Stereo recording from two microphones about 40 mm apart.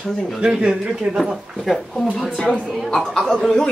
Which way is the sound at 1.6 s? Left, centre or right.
Centre.